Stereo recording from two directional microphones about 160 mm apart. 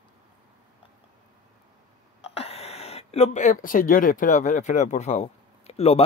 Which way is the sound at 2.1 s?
40° left (ahead or behind).